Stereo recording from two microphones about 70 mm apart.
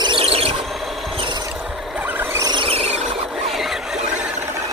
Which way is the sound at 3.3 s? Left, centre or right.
Centre.